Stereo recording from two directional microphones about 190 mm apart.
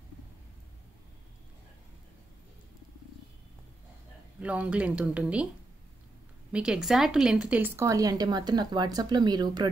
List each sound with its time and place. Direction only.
4.4 s speech: 5° right (ahead or behind)
6.5 s speech: 5° right (ahead or behind); by 9.7 s 20° right (ahead or behind)